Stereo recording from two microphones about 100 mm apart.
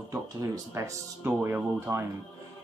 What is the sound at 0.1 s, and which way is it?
Speech, 35° right (ahead or behind).